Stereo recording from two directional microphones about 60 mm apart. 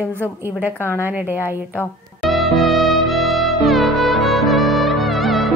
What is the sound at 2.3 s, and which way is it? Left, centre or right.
Music, centre.